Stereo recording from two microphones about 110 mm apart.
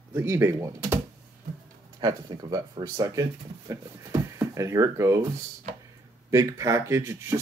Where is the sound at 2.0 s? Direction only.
35° right (ahead or behind).